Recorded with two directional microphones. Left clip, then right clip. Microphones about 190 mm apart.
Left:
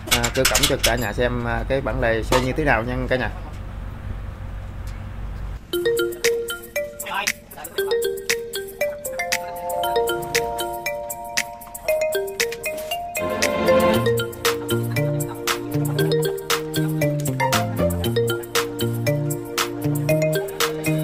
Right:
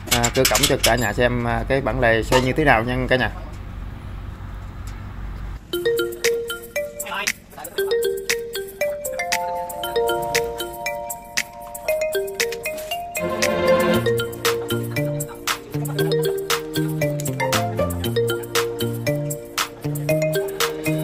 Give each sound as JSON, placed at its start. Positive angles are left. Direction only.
{"t": 0.2, "sound": "speech", "side_deg": -20}
{"t": 5.7, "sound": "music", "side_deg": 0}